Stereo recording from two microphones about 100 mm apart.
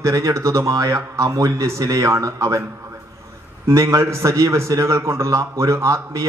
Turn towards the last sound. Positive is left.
turn(degrees=-30)  # may be behind; listen again after turning